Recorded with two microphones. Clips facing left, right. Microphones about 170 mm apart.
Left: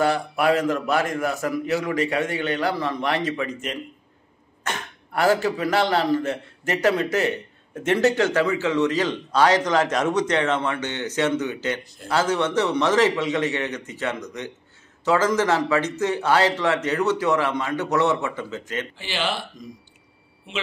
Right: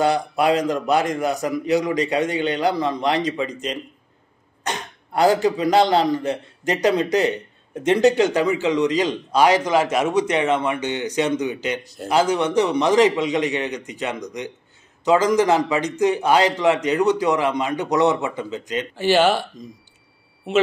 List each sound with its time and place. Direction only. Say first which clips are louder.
0.0 s a man's voice: right 2 dB; 20° right (ahead or behind)
11.8 s a man's voice: right 8 dB; 40° right (ahead or behind)
12.1 s a man's voice: right 3 dB; 15° right (ahead or behind)
18.9 s speech: right 14 dB; 45° right (ahead or behind)